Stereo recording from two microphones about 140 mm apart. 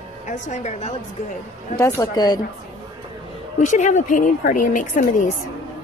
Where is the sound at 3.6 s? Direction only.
60° left (ahead or behind).